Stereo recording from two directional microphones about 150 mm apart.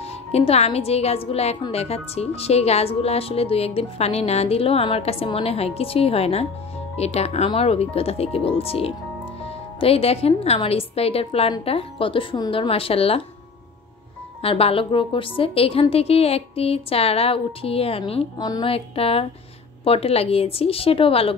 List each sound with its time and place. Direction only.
0.0 s a woman's voice: 45° left (ahead or behind)
14.4 s speech: 40° left (ahead or behind)
18.4 s speech: 25° left (ahead or behind)
18.7 s speech: 40° left (ahead or behind)